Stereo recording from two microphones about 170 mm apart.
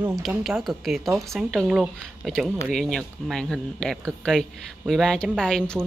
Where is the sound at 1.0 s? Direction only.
15° right (ahead or behind).